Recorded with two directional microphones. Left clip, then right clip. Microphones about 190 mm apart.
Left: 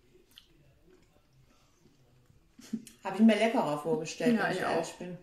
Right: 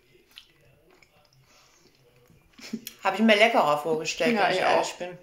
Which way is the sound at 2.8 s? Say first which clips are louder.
Right 6 dB; 5° right (ahead or behind).